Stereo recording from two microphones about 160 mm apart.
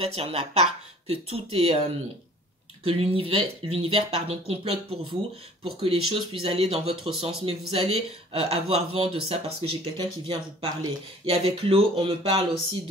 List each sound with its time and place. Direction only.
0.0 s speech: 40° right (ahead or behind)
2.8 s speech: 35° right (ahead or behind)